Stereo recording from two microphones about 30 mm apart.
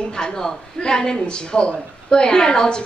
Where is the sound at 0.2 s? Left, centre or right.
Left.